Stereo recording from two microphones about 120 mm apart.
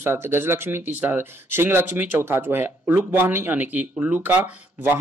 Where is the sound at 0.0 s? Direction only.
20° right (ahead or behind).